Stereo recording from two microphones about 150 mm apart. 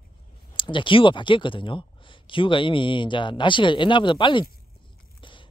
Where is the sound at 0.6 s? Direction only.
35° left (ahead or behind).